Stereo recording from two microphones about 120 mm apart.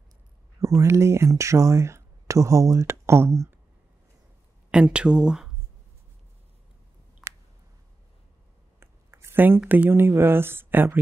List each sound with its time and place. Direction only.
0.6 s speech: 25° right (ahead or behind)
4.6 s speech: 10° right (ahead or behind)
8.7 s a sound: 20° right (ahead or behind)
9.6 s speech: 15° right (ahead or behind)